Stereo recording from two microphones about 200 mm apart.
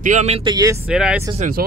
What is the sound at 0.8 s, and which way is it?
Speech, 5° right (ahead or behind).